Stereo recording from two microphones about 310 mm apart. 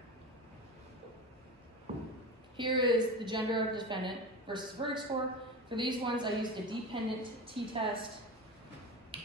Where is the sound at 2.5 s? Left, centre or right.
Centre.